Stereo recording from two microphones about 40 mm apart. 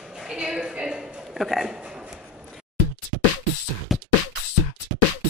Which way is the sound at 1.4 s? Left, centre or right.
Centre.